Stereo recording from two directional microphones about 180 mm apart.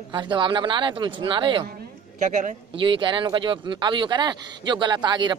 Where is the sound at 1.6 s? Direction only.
50° right (ahead or behind).